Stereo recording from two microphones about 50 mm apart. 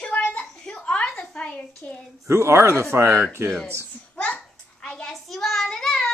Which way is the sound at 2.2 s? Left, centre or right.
Right.